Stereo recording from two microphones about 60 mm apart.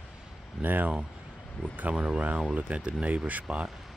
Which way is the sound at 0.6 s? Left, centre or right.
Right.